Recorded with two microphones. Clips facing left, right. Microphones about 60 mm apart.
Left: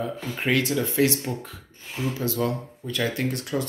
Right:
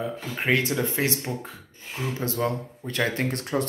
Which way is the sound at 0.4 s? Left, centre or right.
Right.